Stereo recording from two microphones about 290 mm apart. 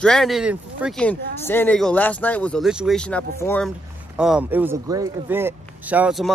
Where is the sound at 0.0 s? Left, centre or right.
Centre.